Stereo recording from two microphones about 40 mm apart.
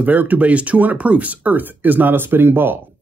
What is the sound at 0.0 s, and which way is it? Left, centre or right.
Speech, right.